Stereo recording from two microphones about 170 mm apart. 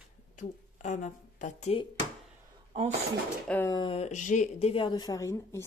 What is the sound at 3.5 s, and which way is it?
Speech, 15° left (ahead or behind).